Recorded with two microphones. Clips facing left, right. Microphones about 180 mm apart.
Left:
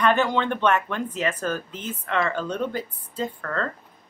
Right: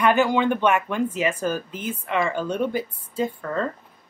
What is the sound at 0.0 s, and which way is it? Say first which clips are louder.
Speech: right 2 dB; 10° right (ahead or behind).